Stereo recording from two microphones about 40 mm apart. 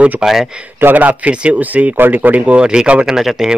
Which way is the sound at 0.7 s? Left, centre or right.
Right.